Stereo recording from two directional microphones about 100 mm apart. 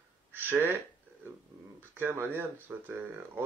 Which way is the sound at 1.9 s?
25° right (ahead or behind).